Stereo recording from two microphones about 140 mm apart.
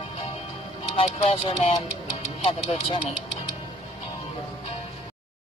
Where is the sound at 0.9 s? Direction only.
45° left (ahead or behind).